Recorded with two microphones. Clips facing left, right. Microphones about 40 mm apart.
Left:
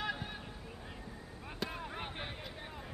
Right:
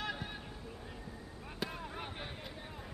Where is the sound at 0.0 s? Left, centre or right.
Centre.